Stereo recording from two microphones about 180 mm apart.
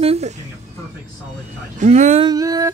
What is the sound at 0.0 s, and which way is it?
Speech, 35° right (ahead or behind).